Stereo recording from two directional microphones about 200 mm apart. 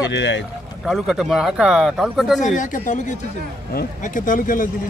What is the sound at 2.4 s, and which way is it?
Speech, 40° left (ahead or behind).